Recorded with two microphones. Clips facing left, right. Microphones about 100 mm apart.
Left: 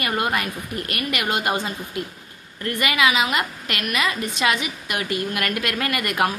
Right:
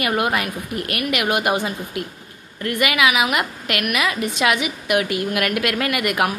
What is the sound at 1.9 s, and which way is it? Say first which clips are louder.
Speech: right 1 dB; 90° right.